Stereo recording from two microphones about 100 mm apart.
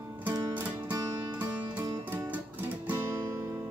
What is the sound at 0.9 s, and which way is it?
Music, 35° right (ahead or behind).